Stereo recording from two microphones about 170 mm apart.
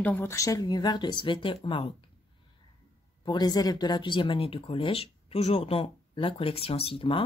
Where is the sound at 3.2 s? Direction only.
25° left (ahead or behind).